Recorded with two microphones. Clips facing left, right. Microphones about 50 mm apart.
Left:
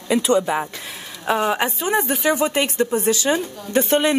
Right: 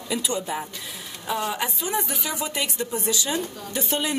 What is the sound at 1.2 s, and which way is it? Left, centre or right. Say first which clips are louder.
Speech: left 7 dB; left.